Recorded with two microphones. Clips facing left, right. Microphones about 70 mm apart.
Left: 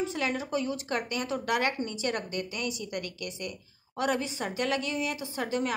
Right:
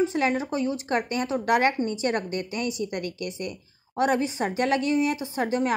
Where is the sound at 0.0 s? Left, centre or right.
Right.